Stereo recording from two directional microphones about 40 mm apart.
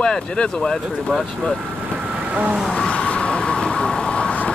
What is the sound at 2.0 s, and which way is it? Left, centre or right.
Vehicle, right.